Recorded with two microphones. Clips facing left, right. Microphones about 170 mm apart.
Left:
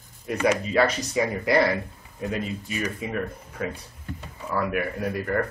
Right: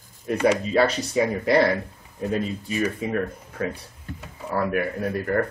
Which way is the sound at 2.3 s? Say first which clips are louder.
Right 5 dB; 35° right (ahead or behind).